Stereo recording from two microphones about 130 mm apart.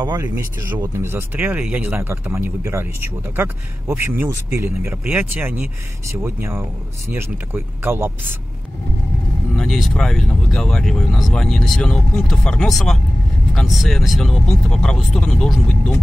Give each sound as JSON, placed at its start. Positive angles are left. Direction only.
{"t": 0.0, "sound": "speech", "side_deg": -30}
{"t": 0.3, "sound": "speech", "side_deg": -15}
{"t": 9.6, "sound": "speech", "side_deg": 0}